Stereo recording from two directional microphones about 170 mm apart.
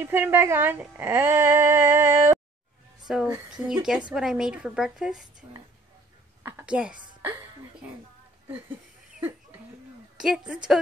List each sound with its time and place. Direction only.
0.0 s a woman's voice: 15° right (ahead or behind)
3.1 s a woman's voice: 5° right (ahead or behind)
6.4 s a sound: 10° right (ahead or behind)
10.1 s a woman's voice: 5° right (ahead or behind)